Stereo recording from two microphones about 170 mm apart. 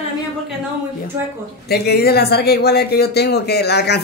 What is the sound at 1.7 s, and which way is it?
Speech, 70° left (ahead or behind).